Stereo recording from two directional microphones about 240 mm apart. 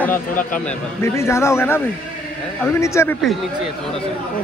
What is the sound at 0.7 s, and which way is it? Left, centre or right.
A man's voice, centre.